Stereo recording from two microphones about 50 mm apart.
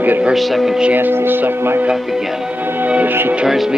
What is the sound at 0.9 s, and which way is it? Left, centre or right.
Speech, right.